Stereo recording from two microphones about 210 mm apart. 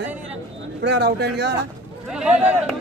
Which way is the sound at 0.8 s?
55° right (ahead or behind).